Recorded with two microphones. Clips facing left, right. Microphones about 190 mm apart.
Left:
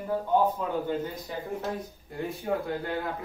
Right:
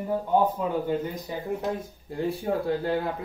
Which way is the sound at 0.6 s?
15° right (ahead or behind).